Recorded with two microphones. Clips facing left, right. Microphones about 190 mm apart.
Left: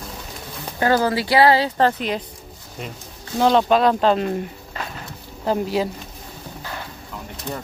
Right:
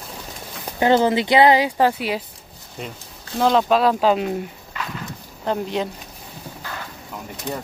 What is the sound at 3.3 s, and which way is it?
Speech, centre (ahead or behind).